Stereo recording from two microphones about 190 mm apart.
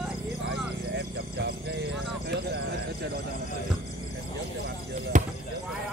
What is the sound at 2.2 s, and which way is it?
Clip-clop, 60° right (ahead or behind).